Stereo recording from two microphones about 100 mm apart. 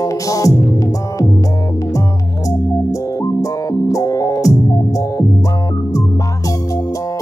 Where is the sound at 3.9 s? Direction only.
35° left (ahead or behind).